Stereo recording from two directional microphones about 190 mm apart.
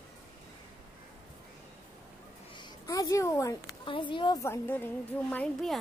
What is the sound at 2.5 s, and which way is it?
A woman's voice, 20° left (ahead or behind).